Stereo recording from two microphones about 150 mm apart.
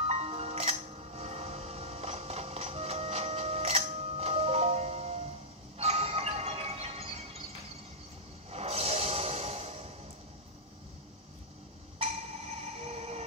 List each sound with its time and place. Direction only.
0.0 s music: 45° right (ahead or behind)
8.5 s music: 45° right (ahead or behind)
12.8 s train: 45° right (ahead or behind)